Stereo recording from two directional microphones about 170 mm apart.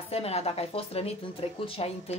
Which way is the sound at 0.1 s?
35° left (ahead or behind).